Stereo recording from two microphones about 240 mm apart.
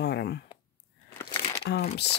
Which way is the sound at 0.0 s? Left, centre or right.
Left.